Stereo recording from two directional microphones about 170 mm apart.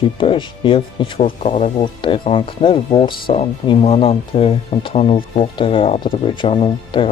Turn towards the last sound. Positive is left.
turn(degrees=30)  # may be behind; listen again after turning